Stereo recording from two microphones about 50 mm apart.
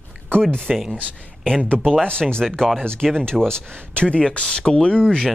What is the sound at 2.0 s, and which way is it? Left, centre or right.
Speech, centre.